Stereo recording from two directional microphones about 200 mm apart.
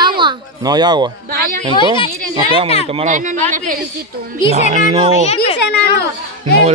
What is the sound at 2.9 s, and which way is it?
Speech, 40° right (ahead or behind).